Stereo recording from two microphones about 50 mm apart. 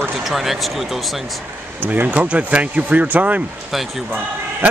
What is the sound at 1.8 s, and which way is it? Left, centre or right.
Speech, right.